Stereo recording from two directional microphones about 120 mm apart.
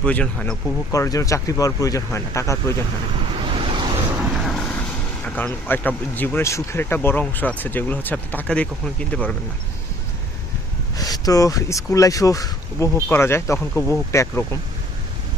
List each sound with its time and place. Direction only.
0.0 s speech: 10° left (ahead or behind)
0.9 s speech: 30° left (ahead or behind)
3.3 s waves: 50° right (ahead or behind)
4.4 s speech: centre (ahead or behind)
11.0 s speech: 30° left (ahead or behind)